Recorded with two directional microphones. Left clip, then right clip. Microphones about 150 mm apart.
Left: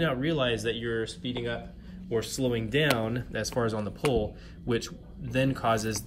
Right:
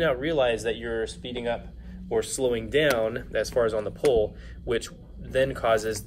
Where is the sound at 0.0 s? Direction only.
40° left (ahead or behind).